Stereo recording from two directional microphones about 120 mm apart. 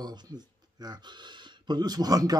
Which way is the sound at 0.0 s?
35° right (ahead or behind).